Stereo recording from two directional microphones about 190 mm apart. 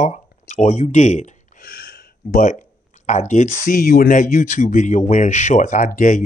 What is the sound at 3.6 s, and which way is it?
Speech, 50° left (ahead or behind).